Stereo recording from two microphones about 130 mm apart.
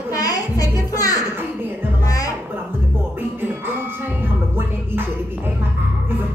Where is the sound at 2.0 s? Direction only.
25° left (ahead or behind).